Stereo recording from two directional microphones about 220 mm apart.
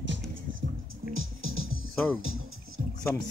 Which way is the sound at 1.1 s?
65° right (ahead or behind).